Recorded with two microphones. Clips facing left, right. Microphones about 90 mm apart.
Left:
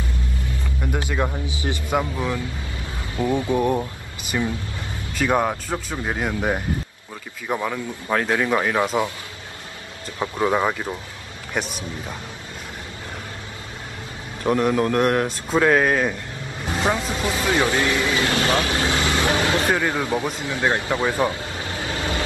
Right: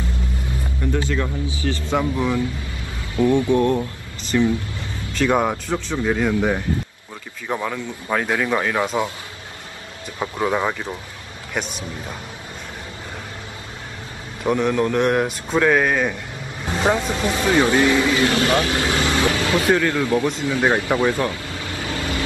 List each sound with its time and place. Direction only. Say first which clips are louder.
0.9 s a man's voice: even; 20° left (ahead or behind)
2.0 s speech: right 3 dB; 5° left (ahead or behind)
3.2 s a man's voice: right 5 dB; 20° left (ahead or behind)
3.5 s speech: right 2 dB; 10° left (ahead or behind)
10.1 s speech: left 1 dB; centre (ahead or behind)
14.4 s speech: even; 5° left (ahead or behind)
16.6 s speech: right 3 dB; 20° right (ahead or behind)
18.3 s speech: right 2 dB; 35° left (ahead or behind)
18.7 s vehicle: right 1 dB; 25° left (ahead or behind)
19.7 s a man's voice: right 3 dB; 20° left (ahead or behind)
20.6 s speech: right 2 dB; 25° right (ahead or behind)
21.0 s a sound: right 1 dB; 25° left (ahead or behind)